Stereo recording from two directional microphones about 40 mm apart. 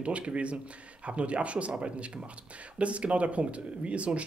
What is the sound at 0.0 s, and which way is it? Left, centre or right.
Speech, right.